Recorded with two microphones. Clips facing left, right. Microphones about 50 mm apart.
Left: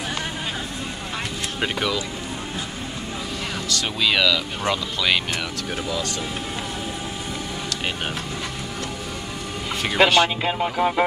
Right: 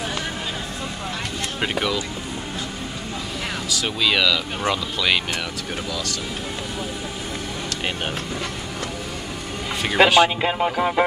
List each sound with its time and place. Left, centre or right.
1.6 s speech: centre
3.6 s speech: centre
5.9 s speech: left
9.8 s speech: centre